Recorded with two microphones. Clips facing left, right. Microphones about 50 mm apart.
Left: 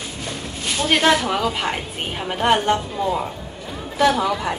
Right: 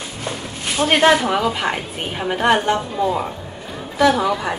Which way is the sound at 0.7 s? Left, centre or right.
Right.